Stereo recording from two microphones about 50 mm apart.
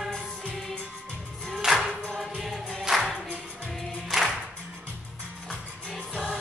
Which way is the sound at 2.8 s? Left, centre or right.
Centre.